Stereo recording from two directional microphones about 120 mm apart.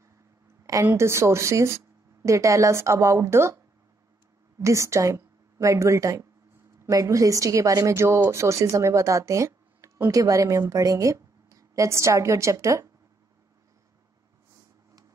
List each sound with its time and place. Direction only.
0.8 s a woman's voice: 20° right (ahead or behind)
4.6 s a woman's voice: 25° right (ahead or behind)